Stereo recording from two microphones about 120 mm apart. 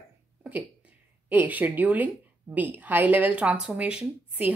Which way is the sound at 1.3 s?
15° right (ahead or behind).